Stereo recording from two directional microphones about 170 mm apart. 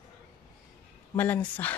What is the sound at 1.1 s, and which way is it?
Speech, 10° left (ahead or behind).